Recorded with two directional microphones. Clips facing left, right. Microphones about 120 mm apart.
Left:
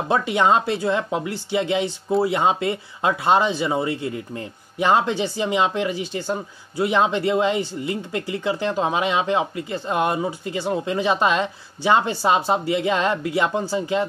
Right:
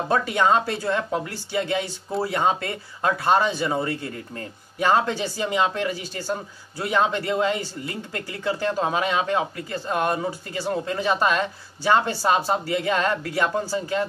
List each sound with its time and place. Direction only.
0.1 s speech: 15° left (ahead or behind)